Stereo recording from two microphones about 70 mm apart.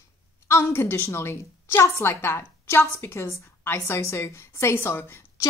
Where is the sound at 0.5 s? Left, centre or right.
Left.